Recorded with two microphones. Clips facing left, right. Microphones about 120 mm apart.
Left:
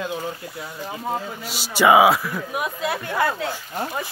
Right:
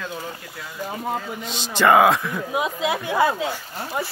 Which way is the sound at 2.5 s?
20° right (ahead or behind).